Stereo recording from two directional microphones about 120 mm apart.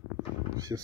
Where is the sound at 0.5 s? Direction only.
30° right (ahead or behind).